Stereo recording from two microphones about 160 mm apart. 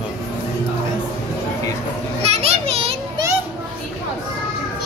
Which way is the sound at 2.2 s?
40° right (ahead or behind).